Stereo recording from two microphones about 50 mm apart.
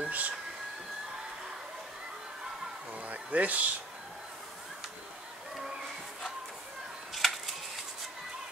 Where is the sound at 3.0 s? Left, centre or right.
Right.